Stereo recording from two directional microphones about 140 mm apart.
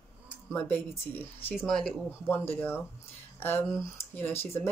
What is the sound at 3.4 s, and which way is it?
Speech, 15° left (ahead or behind).